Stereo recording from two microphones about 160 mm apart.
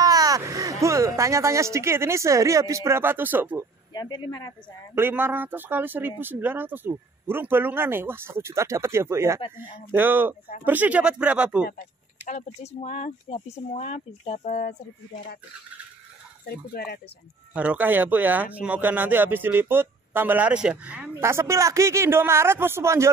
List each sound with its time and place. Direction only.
0.0 s speech: 25° right (ahead or behind)
3.9 s speech: 25° left (ahead or behind)
4.9 s speech: 15° right (ahead or behind)
12.3 s speech: 50° left (ahead or behind)
16.4 s speech: 75° left (ahead or behind)
17.6 s speech: 10° right (ahead or behind)